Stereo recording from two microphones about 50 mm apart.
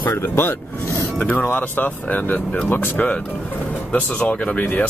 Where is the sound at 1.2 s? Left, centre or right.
Left.